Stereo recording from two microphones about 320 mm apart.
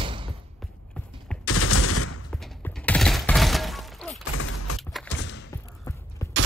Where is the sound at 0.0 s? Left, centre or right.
Centre.